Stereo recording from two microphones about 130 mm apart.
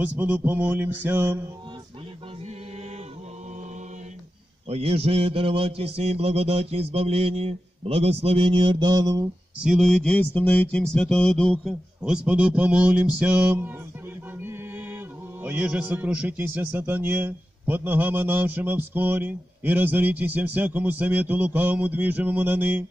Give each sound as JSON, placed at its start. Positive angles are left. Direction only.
{"t": 0.0, "sound": "a man's voice", "side_deg": -15}
{"t": 4.6, "sound": "a man's voice", "side_deg": -50}
{"t": 9.6, "sound": "a sound", "side_deg": 0}
{"t": 12.0, "sound": "a man's voice", "side_deg": -10}
{"t": 14.4, "sound": "chant", "side_deg": -20}
{"t": 15.4, "sound": "a man's voice", "side_deg": -10}